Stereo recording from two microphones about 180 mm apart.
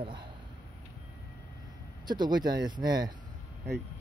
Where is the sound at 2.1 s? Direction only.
25° right (ahead or behind).